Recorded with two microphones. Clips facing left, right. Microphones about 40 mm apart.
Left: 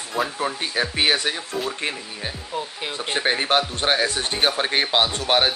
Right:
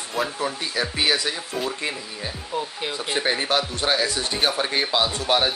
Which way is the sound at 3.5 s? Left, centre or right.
Left.